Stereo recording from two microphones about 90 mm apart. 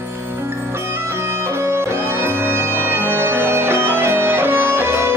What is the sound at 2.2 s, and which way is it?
Music, 25° right (ahead or behind).